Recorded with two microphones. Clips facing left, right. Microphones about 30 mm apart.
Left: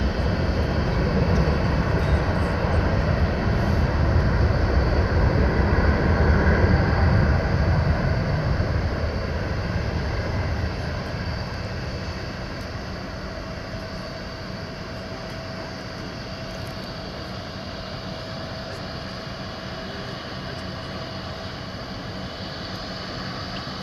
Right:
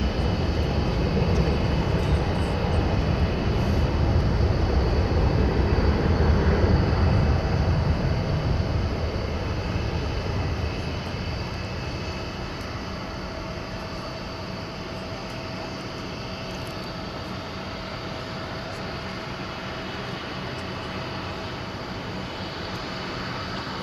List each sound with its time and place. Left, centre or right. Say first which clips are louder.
0.0 s vehicle: left 1 dB; centre
4.0 s vehicle: left 2 dB; left